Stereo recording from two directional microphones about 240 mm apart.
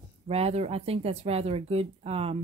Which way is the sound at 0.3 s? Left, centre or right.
Right.